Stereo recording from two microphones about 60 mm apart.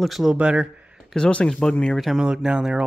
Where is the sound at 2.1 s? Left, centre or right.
Centre.